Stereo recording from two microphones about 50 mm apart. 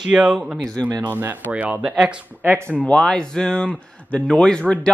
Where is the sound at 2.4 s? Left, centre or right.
Right.